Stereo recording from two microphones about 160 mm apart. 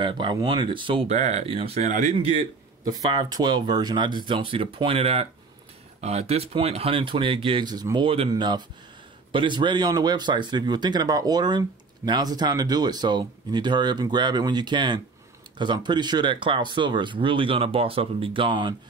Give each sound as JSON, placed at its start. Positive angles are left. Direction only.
{"t": 0.0, "sound": "speech", "side_deg": -30}
{"t": 1.1, "sound": "speech", "side_deg": -45}
{"t": 2.8, "sound": "speech", "side_deg": -25}